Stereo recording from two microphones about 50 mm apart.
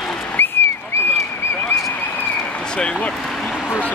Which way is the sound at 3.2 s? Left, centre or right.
Centre.